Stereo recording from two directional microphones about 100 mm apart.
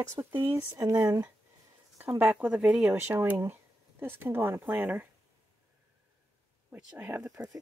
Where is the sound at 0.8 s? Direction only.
35° right (ahead or behind).